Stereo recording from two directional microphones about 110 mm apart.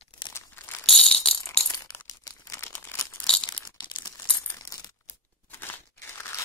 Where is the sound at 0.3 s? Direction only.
25° left (ahead or behind).